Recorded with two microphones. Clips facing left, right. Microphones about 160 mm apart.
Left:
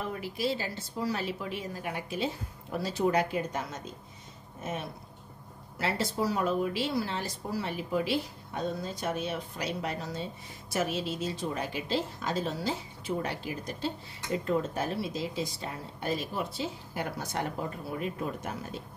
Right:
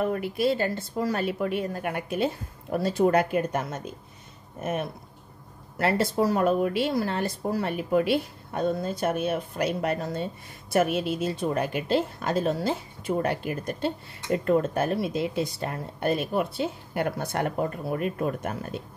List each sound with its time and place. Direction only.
0.0 s speech: 55° right (ahead or behind)